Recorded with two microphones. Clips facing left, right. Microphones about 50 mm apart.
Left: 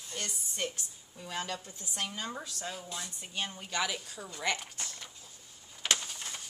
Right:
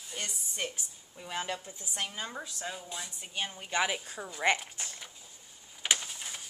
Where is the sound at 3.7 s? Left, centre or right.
Right.